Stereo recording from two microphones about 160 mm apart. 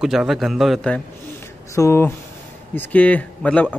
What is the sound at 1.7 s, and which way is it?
Speech, 15° left (ahead or behind).